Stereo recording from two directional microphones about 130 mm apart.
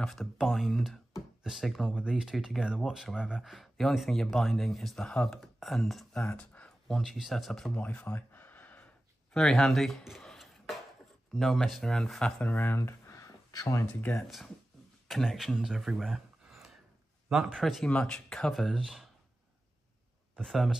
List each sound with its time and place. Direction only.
0.0 s speech: centre (ahead or behind)
6.2 s a sound: 10° left (ahead or behind)
7.0 s speech: centre (ahead or behind)
12.5 s a sound: 20° left (ahead or behind)
14.0 s speech: 5° left (ahead or behind)
20.3 s speech: centre (ahead or behind)